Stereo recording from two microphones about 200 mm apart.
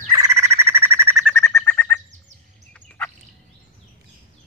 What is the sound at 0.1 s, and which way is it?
Bird, 15° right (ahead or behind).